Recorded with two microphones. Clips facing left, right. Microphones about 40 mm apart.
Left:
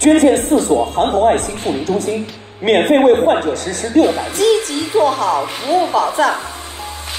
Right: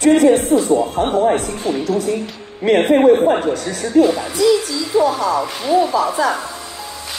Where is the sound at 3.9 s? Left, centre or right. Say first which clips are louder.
Even; left.